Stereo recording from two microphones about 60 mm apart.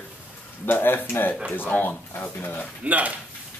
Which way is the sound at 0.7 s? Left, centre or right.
Left.